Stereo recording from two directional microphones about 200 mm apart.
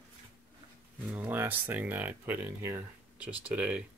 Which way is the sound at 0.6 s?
25° right (ahead or behind).